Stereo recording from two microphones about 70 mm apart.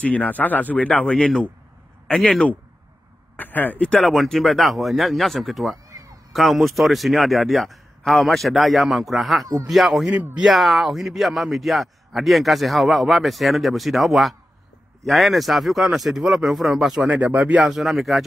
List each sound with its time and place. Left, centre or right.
0.0 s speech: left
3.3 s speech: left
4.0 s a man's voice: centre
5.9 s a sound: right
6.3 s a man's voice: centre
17.1 s speech: right
17.6 s a man's voice: centre